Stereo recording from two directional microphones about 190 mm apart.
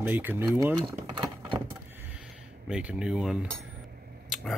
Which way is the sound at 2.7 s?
5° right (ahead or behind).